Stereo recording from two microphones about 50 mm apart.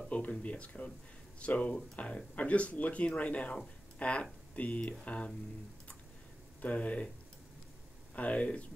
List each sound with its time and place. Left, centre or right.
0.1 s speech: left
6.6 s speech: left
8.1 s speech: left